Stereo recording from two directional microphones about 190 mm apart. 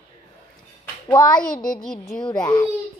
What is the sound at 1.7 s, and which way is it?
Speech, 20° left (ahead or behind).